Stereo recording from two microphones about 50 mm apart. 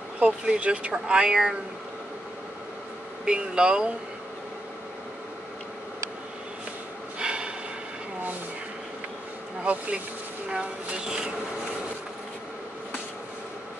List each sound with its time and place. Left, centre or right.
0.2 s speech: right
3.3 s speech: centre
7.2 s snort: centre
9.6 s speech: right